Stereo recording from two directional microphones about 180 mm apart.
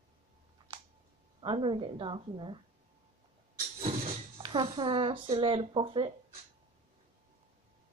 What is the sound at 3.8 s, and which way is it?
Speech, 35° right (ahead or behind).